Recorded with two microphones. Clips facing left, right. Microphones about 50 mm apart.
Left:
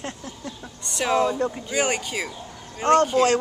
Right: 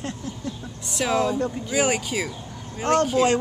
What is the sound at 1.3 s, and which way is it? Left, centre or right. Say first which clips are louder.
Speech: even; centre.